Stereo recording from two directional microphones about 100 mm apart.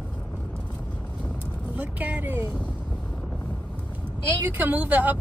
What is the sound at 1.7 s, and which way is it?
Vehicle, 15° right (ahead or behind).